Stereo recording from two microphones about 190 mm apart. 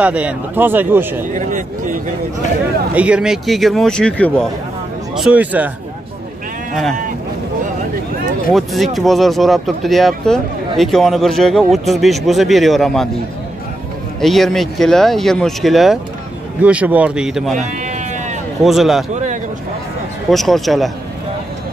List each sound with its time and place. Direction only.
0.0 s speech: 5° right (ahead or behind)
1.3 s speech: 40° right (ahead or behind)
2.9 s speech: 5° right (ahead or behind)
6.7 s speech: centre (ahead or behind)
8.5 s speech: centre (ahead or behind)
14.2 s speech: centre (ahead or behind)
17.6 s sheep: 40° right (ahead or behind)
18.6 s speech: centre (ahead or behind)
19.1 s a sound: 40° right (ahead or behind)
20.2 s speech: centre (ahead or behind)